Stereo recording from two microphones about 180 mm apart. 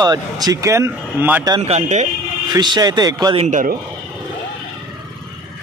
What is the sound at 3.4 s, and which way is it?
Speech, 45° right (ahead or behind).